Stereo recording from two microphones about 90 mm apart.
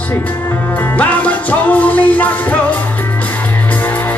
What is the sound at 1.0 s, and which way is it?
Music, 15° left (ahead or behind).